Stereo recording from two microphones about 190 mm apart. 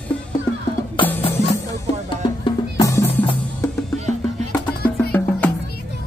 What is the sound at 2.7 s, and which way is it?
Drum, 15° left (ahead or behind).